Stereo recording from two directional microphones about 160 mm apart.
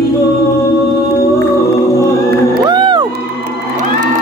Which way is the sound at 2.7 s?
30° right (ahead or behind).